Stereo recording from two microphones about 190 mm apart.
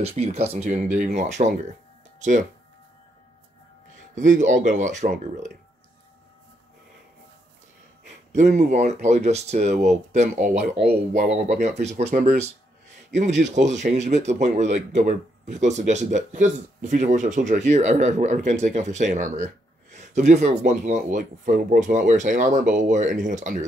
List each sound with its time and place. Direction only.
0.0 s speech: 35° right (ahead or behind)
4.1 s speech: 40° right (ahead or behind)
8.3 s speech: 40° right (ahead or behind)
10.9 s speech: 55° right (ahead or behind)
11.2 s speech: 40° right (ahead or behind)